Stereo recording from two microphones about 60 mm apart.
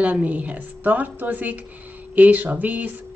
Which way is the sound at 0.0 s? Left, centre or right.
Right.